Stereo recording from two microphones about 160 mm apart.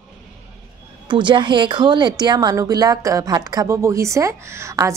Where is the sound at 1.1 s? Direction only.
30° right (ahead or behind).